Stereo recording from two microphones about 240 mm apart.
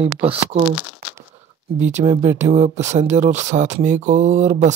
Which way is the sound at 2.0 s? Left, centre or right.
Centre.